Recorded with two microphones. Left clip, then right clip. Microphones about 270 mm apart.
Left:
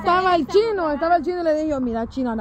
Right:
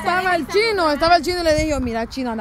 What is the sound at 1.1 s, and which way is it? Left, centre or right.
Speech, centre.